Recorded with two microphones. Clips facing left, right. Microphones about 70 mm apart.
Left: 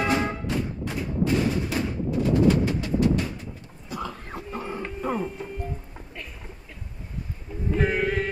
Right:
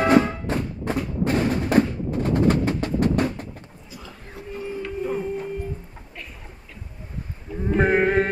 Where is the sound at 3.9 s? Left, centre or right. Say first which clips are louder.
Left 8 dB; left.